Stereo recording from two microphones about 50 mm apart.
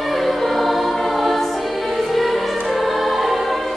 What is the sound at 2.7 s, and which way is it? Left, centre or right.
Music, centre.